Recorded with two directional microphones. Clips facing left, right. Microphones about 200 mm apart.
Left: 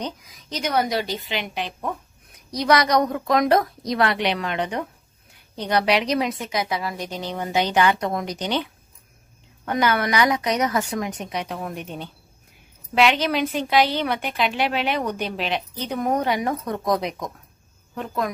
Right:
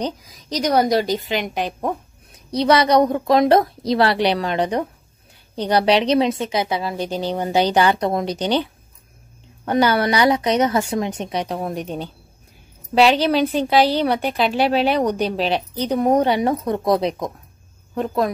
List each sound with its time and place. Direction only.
0.0 s a woman's voice: 35° right (ahead or behind)
2.5 s a woman's voice: 30° right (ahead or behind)
9.7 s a woman's voice: 30° right (ahead or behind)